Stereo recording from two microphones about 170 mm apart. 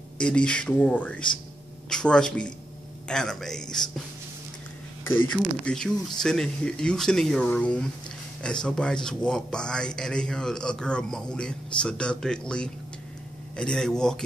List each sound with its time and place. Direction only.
0.2 s speech: 5° left (ahead or behind)
5.3 s speech: 5° left (ahead or behind)